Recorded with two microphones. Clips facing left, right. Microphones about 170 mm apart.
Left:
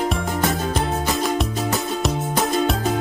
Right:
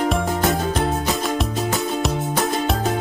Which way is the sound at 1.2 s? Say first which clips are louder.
Even; centre (ahead or behind).